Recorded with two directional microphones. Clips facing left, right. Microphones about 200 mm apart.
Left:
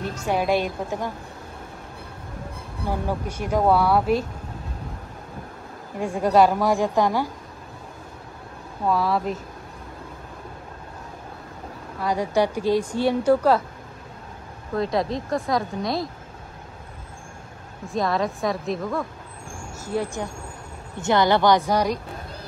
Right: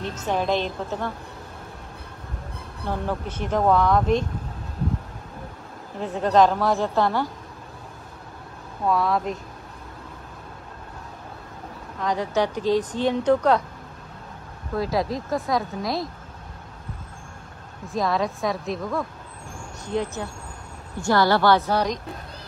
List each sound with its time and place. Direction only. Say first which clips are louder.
0.0 s speech: left 1 dB; 10° left (ahead or behind)
2.9 s speech: left 1 dB; 10° left (ahead or behind)
5.9 s speech: left 1 dB; 10° left (ahead or behind)
8.8 s speech: even; centre (ahead or behind)
12.0 s speech: left 2 dB; 10° left (ahead or behind)
14.8 s speech: left 1 dB; centre (ahead or behind)
17.8 s speech: even; centre (ahead or behind)
21.0 s speech: left 1 dB; 20° left (ahead or behind)